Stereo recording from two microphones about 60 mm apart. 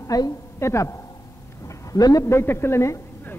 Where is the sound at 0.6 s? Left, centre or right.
Left.